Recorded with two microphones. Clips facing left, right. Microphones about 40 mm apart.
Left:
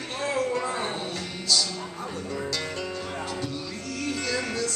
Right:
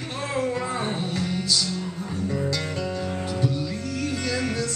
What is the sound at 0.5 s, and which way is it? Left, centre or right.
Music, centre.